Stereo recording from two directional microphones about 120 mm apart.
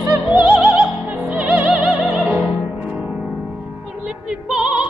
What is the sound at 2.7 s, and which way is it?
Music, 10° right (ahead or behind).